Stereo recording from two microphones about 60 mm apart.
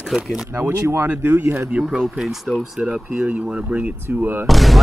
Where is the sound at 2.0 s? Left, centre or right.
Centre.